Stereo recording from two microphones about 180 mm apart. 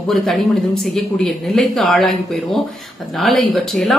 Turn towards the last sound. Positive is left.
turn(degrees=0)  # may be behind; listen again after turning